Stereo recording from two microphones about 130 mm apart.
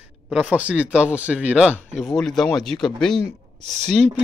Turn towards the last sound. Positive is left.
turn(degrees=5)  # may be behind; listen again after turning